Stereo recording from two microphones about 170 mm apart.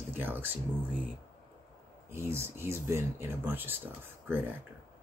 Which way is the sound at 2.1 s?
15° right (ahead or behind).